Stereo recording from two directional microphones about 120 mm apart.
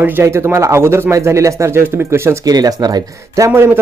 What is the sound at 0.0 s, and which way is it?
Speech, 20° right (ahead or behind).